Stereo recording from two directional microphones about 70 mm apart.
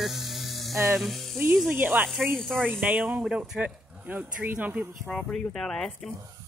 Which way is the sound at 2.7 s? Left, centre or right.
Right.